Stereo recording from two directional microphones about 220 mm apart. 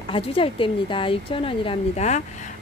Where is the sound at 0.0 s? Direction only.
25° left (ahead or behind).